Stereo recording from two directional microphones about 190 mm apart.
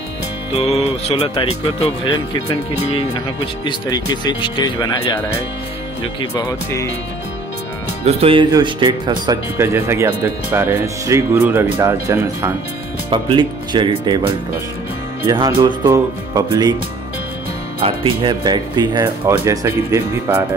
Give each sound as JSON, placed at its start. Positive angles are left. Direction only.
{"t": 0.6, "sound": "music", "side_deg": 35}
{"t": 3.6, "sound": "speech", "side_deg": 20}
{"t": 6.3, "sound": "speech", "side_deg": 15}
{"t": 8.0, "sound": "speech", "side_deg": -30}
{"t": 13.1, "sound": "speech", "side_deg": -25}
{"t": 17.7, "sound": "speech", "side_deg": -25}